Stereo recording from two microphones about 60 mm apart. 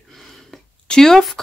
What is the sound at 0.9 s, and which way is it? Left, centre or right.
Speech, centre.